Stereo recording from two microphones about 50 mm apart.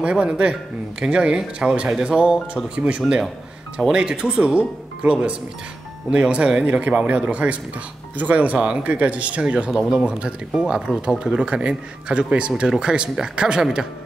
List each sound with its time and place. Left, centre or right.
0.0 s speech: centre
8.5 s speech: centre
8.8 s speech: right